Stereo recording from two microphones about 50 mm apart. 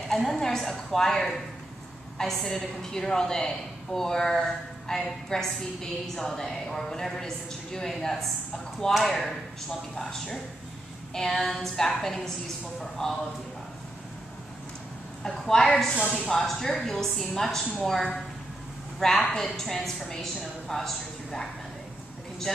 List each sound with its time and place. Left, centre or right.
0.1 s a woman's voice: centre
13.0 s a woman's voice: centre
15.2 s a woman's voice: centre
15.9 s speech: left
16.3 s a woman's voice: centre